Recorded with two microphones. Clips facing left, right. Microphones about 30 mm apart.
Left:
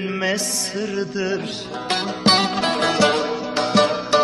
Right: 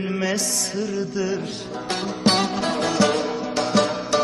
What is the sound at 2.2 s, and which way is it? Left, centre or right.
Music, left.